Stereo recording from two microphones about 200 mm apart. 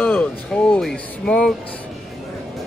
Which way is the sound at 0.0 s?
10° left (ahead or behind).